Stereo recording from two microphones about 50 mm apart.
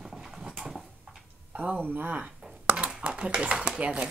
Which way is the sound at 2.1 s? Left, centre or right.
Right.